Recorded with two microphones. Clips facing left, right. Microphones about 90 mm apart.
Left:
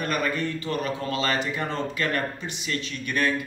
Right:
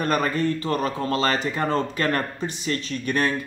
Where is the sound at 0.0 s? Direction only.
40° right (ahead or behind).